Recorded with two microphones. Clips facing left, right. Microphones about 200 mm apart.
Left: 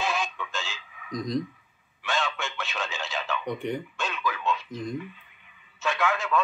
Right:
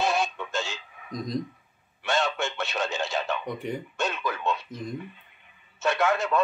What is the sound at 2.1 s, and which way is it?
Radio, 45° right (ahead or behind).